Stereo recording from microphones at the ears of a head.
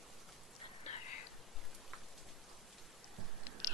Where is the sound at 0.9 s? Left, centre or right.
Left.